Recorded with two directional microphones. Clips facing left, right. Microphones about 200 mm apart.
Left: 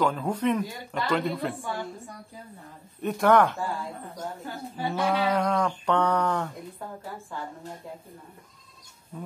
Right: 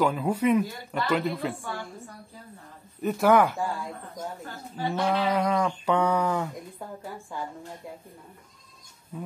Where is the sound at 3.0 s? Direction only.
5° right (ahead or behind).